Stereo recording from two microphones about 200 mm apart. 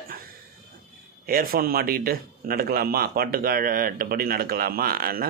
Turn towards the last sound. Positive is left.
turn(degrees=-45)  # may be behind; listen again after turning